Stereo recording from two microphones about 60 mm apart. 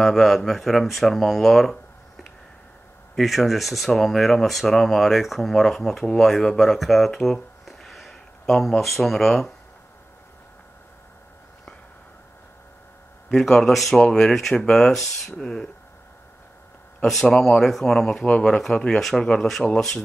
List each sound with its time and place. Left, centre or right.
0.0 s speech: centre
13.3 s speech: centre
17.0 s speech: centre